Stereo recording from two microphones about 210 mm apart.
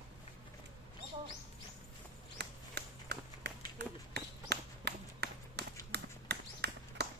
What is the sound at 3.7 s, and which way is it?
Run, 50° right (ahead or behind).